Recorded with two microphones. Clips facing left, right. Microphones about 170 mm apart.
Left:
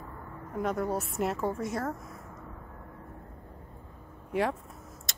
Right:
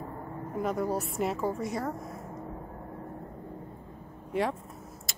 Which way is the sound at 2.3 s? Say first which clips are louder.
Right 7 dB; 35° right (ahead or behind).